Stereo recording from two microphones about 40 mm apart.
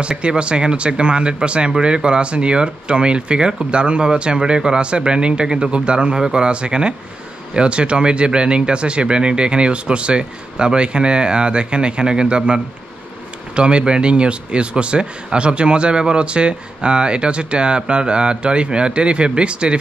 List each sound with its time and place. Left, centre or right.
0.2 s speech: right